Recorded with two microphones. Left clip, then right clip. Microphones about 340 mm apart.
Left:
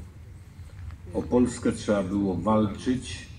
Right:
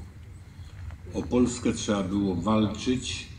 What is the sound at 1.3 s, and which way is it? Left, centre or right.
Speech, left.